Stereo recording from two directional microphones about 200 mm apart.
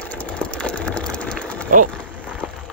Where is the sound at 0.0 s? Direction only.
5° left (ahead or behind).